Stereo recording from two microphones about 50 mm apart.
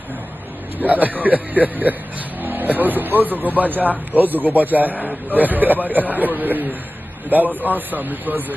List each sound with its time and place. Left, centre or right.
0.7 s speech: right